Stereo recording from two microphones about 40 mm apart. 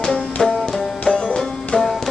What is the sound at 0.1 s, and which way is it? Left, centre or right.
Music, left.